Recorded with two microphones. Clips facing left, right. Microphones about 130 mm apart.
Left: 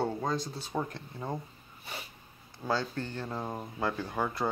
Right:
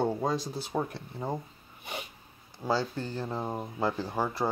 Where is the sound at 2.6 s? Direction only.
10° right (ahead or behind).